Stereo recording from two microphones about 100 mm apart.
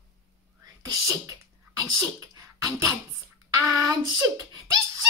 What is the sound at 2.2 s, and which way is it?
Beatboxing, 35° right (ahead or behind).